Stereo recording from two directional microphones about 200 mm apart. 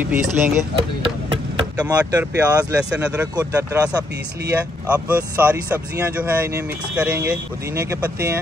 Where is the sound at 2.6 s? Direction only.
5° right (ahead or behind).